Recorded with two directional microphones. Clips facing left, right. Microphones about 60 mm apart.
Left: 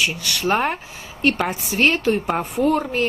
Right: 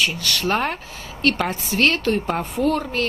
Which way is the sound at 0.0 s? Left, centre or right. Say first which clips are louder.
Even; centre.